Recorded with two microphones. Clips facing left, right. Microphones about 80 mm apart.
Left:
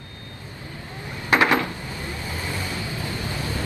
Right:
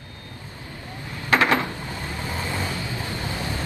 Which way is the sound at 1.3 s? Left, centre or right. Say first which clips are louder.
Left 1 dB; centre.